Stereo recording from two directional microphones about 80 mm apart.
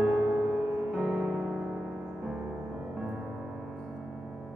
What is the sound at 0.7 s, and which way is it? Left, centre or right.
Music, centre.